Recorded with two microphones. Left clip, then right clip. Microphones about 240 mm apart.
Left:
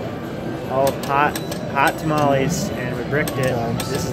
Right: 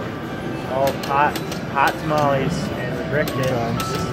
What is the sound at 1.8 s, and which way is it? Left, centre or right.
Speech, left.